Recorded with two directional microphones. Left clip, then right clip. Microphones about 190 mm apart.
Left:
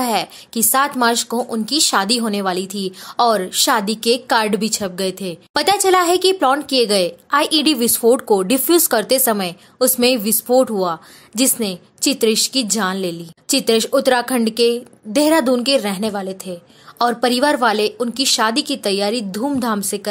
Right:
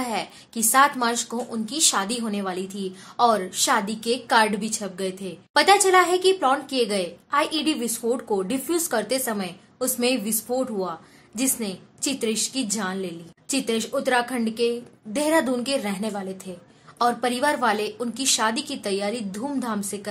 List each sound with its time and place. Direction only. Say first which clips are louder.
0.0 s a woman's voice: left 9 dB; 40° left (ahead or behind)